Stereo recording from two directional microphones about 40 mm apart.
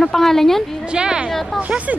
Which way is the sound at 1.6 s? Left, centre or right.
Right.